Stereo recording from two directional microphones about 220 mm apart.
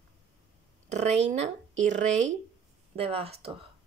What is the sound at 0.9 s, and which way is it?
A woman's voice, 30° right (ahead or behind).